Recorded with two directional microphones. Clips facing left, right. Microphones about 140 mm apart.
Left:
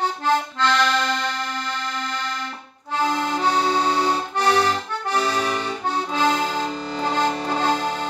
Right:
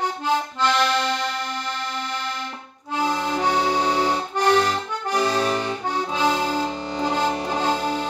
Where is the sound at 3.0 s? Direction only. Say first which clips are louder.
Left 1 dB; 10° right (ahead or behind).